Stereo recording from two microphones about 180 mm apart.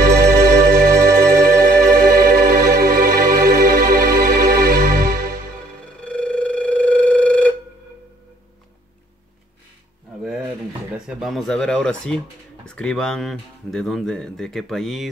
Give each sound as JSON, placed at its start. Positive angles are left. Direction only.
{"t": 0.0, "sound": "organ", "side_deg": -55}
{"t": 2.0, "sound": "music", "side_deg": -50}
{"t": 5.9, "sound": "telephone", "side_deg": 5}
{"t": 10.2, "sound": "a sound", "side_deg": 0}
{"t": 11.1, "sound": "speech", "side_deg": 0}